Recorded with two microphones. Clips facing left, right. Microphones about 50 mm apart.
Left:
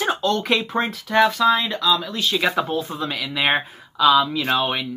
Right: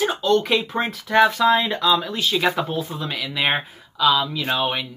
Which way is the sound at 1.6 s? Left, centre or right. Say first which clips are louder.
Right 1 dB; right.